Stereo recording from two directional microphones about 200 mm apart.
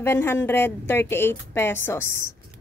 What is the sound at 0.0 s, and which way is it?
Speech, 10° left (ahead or behind).